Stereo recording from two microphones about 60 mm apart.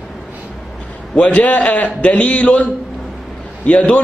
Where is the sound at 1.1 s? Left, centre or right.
Centre.